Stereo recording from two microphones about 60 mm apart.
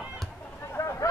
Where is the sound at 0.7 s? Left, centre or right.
Left.